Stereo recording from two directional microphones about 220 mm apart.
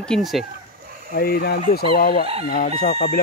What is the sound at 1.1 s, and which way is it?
Speech, 40° left (ahead or behind).